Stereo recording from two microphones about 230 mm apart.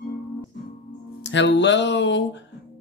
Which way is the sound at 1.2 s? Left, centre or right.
Left.